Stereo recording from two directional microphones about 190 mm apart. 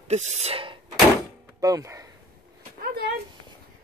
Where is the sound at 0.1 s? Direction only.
35° right (ahead or behind).